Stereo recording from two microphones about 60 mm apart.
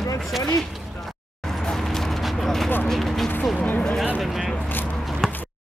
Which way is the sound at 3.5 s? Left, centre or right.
Left.